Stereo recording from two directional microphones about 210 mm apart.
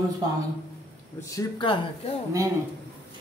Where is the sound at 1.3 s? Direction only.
25° left (ahead or behind).